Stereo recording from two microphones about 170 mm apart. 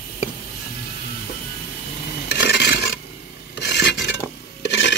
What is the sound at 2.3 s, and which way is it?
Filing, 85° left.